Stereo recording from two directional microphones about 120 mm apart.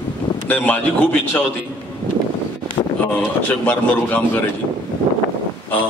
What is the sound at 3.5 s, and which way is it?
Speech, 15° left (ahead or behind).